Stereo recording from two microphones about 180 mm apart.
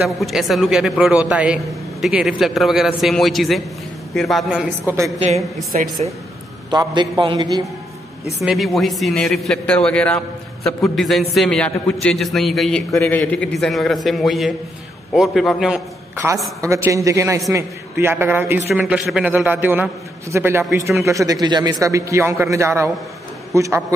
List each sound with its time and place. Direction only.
0.0 s a man's voice: centre (ahead or behind)
5.7 s a woman's voice: 50° right (ahead or behind)
6.7 s a man's voice: 25° right (ahead or behind)
8.4 s a man's voice: centre (ahead or behind)
16.2 s a man's voice: 10° right (ahead or behind)